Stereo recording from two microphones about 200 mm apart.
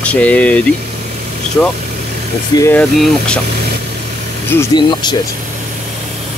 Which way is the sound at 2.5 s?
15° left (ahead or behind).